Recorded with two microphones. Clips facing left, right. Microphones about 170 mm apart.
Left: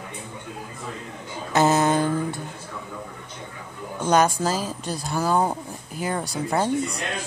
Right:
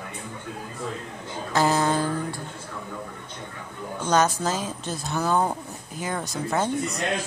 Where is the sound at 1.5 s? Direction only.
20° left (ahead or behind).